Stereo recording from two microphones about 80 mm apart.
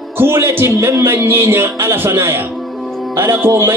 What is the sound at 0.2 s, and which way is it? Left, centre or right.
Speech, right.